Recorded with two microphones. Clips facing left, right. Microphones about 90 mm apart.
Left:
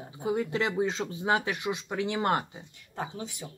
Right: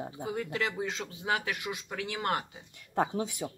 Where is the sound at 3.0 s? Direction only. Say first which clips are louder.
Right 6 dB; 50° right (ahead or behind).